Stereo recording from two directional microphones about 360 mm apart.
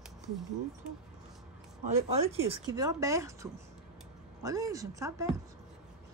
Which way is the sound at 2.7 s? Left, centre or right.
Centre.